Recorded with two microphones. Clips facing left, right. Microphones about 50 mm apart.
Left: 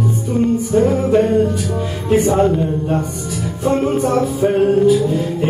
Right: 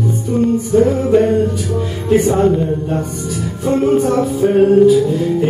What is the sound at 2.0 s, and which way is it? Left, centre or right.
Music, centre.